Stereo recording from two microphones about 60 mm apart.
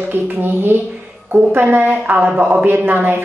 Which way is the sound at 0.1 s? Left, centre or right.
Right.